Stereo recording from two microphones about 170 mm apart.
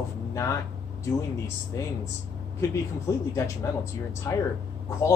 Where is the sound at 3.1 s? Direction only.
20° left (ahead or behind).